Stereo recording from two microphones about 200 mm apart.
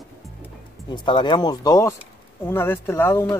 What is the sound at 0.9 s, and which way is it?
Speech, 20° left (ahead or behind).